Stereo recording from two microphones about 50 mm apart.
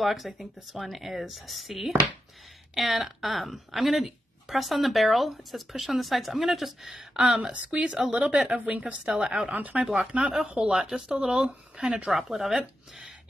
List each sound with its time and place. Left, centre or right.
0.0 s speech: centre
7.8 s a woman's voice: centre
9.0 s speech: centre
9.5 s a woman's voice: right
10.5 s speech: centre
12.1 s speech: centre